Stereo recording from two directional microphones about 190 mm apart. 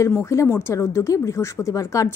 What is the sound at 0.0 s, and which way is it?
Speech, 15° left (ahead or behind).